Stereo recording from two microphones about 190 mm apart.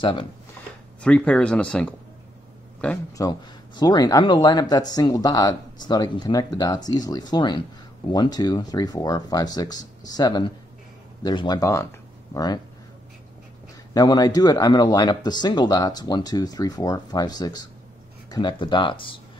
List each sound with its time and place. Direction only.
0.0 s speech: 25° left (ahead or behind)
1.0 s a man's voice: 5° left (ahead or behind)
3.2 s speech: 20° left (ahead or behind)
13.9 s speech: 20° left (ahead or behind)